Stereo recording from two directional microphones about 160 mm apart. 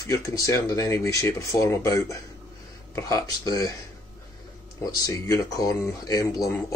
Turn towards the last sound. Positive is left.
turn(degrees=20)  # may be behind; listen again after turning